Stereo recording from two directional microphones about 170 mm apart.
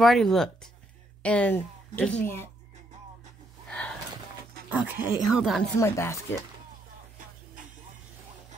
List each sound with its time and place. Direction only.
0.0 s a woman's voice: centre (ahead or behind)
3.6 s a sound: 10° left (ahead or behind)
4.6 s speech: 10° right (ahead or behind)
5.8 s a woman's voice: 15° left (ahead or behind)